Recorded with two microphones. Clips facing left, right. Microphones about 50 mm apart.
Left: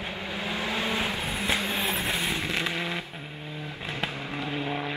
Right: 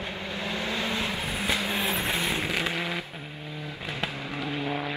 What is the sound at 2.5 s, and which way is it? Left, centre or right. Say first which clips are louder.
Vehicle: even; centre.